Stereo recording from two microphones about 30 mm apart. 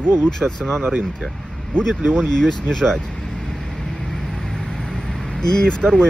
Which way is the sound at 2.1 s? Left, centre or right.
Centre.